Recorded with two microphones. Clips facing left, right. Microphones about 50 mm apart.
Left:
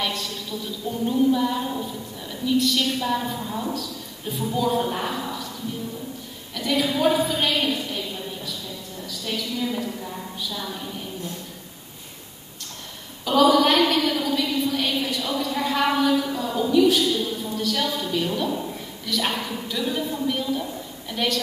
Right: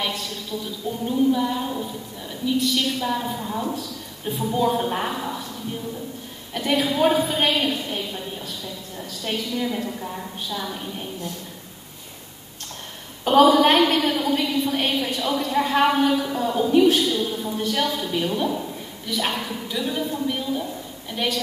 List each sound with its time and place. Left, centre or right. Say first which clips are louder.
1.0 s a woman's voice: even; centre
4.4 s a woman's voice: right 1 dB; right
6.5 s a woman's voice: right 1 dB; right
9.1 s a woman's voice: right 2 dB; right
9.8 s a woman's voice: right 1 dB; centre
13.2 s a woman's voice: right 3 dB; right
17.1 s a woman's voice: right 1 dB; right
19.2 s a woman's voice: even; centre